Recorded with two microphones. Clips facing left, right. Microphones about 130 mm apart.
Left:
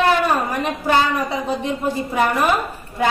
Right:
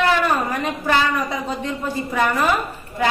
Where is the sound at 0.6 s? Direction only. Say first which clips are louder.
Left 3 dB; 15° left (ahead or behind).